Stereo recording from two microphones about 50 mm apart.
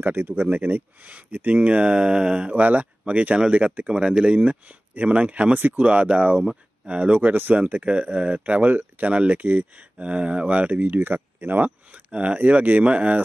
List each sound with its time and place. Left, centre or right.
0.0 s speech: right; by 2.5 s centre
2.5 s speech: right